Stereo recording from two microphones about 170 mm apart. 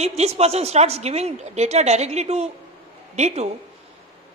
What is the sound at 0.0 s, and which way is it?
A woman's voice, 40° right (ahead or behind).